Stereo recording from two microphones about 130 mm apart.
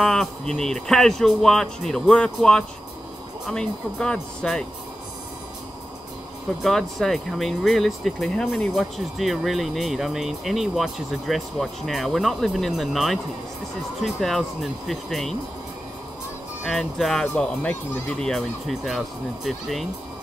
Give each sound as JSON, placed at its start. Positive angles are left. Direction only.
{"t": 0.0, "sound": "speech", "side_deg": 0}
{"t": 6.6, "sound": "speech", "side_deg": 0}
{"t": 16.6, "sound": "speech", "side_deg": 0}
{"t": 17.8, "sound": "speech", "side_deg": 20}
{"t": 18.2, "sound": "speech", "side_deg": 0}